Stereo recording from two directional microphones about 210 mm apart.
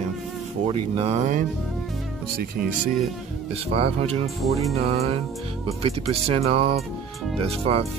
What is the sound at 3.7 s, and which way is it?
Speech, 30° right (ahead or behind).